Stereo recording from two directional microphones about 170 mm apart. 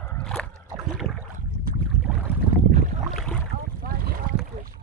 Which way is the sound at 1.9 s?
5° right (ahead or behind).